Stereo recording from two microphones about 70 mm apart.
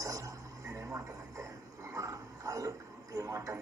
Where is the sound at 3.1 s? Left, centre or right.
Right.